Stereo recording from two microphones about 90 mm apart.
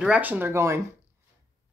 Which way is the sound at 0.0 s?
15° right (ahead or behind).